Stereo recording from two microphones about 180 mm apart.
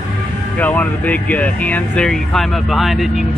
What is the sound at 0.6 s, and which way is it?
Speech, 10° left (ahead or behind).